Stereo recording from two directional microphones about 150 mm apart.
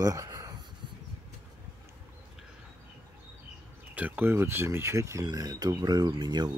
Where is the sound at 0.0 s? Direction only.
25° right (ahead or behind).